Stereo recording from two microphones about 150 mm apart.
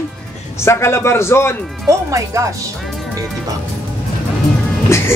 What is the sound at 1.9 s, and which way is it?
Speech, 20° right (ahead or behind).